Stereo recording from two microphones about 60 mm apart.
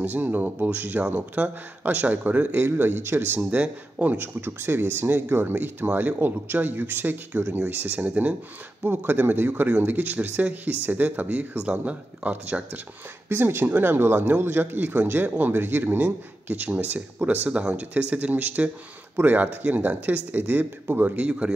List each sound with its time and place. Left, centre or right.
0.0 s a man's voice: right
2.6 s speech: right
3.3 s a man's voice: right
13.3 s a man's voice: right; by 21.5 s centre